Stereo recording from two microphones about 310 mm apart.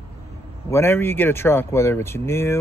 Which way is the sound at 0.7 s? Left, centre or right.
Centre.